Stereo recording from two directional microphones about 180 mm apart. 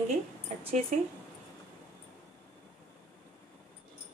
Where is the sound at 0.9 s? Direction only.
40° right (ahead or behind).